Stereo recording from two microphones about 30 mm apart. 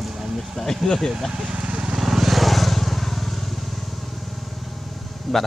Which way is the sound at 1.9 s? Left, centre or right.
Centre.